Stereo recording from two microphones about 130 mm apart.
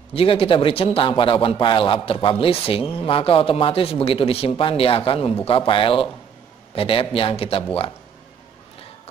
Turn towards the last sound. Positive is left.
turn(degrees=45)  # may be behind; listen again after turning